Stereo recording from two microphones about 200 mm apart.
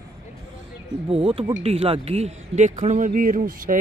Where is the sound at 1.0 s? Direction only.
30° right (ahead or behind).